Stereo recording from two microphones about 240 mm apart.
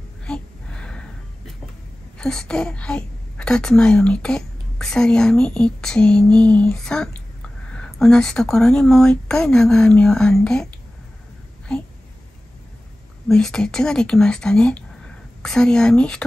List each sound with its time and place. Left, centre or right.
0.2 s gasp: centre
2.1 s a woman's voice: centre
13.3 s a woman's voice: centre